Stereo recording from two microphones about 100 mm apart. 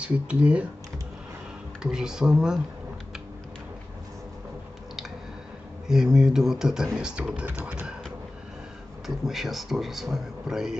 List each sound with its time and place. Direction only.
0.0 s speech: 10° right (ahead or behind)
1.8 s speech: 5° right (ahead or behind)
5.9 s a man's voice: 5° right (ahead or behind)
7.4 s speech: 20° right (ahead or behind)
9.0 s a man's voice: centre (ahead or behind)